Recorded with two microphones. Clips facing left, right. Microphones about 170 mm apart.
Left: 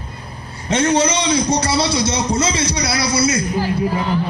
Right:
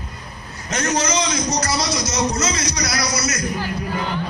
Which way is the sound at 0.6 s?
30° left (ahead or behind).